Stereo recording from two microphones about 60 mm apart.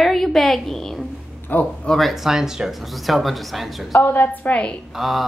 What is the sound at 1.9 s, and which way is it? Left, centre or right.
Speech, centre.